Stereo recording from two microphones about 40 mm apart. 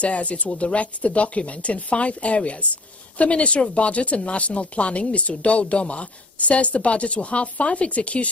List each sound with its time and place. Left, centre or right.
0.0 s speech: left